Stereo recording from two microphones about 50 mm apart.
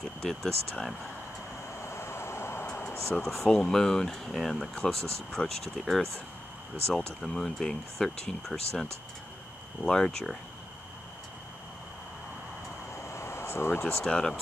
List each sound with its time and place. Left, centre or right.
0.2 s speech: centre
1.8 s vehicle: left
3.1 s speech: centre
3.4 s speech: centre
9.8 s speech: centre
13.0 s a sound: left
13.8 s speech: centre